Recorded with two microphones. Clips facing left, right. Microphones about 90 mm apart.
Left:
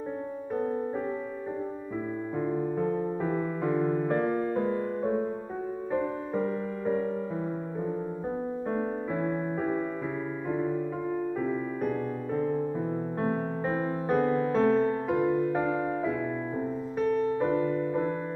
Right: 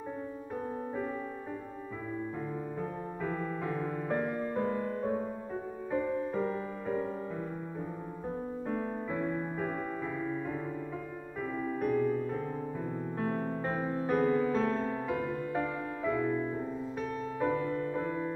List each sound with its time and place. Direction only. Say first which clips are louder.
3.3 s music: left 3 dB; 15° left (ahead or behind)
4.1 s music: left 5 dB; 5° left (ahead or behind)
8.6 s music: left 3 dB; 20° left (ahead or behind)
13.2 s music: left 4 dB; 15° left (ahead or behind)
13.7 s music: left 4 dB; centre (ahead or behind)
14.1 s music: left 2 dB; 25° left (ahead or behind)
14.5 s music: left 7 dB; 5° left (ahead or behind)
15.0 s music: left 7 dB; 35° left (ahead or behind)
15.3 s music: left 7 dB; 20° left (ahead or behind)
17.0 s music: left 8 dB; centre (ahead or behind)
17.8 s music: left 5 dB; 20° left (ahead or behind)